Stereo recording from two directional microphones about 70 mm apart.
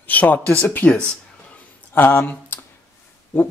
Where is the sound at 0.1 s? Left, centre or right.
Left.